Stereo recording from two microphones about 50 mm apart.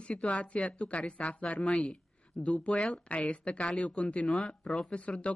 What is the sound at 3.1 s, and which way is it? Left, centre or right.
Speech, left.